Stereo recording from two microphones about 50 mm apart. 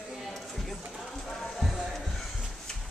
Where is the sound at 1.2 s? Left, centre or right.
Centre.